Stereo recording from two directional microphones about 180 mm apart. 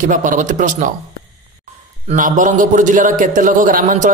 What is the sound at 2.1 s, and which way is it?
A man's voice, 45° right (ahead or behind).